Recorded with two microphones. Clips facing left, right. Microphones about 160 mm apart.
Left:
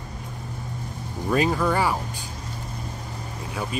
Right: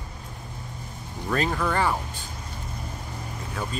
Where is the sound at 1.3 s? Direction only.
10° left (ahead or behind).